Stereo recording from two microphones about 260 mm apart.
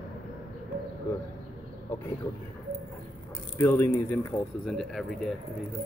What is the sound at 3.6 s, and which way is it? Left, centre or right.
Speech, centre.